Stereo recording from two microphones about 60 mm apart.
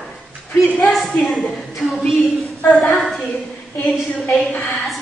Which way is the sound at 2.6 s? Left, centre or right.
Left.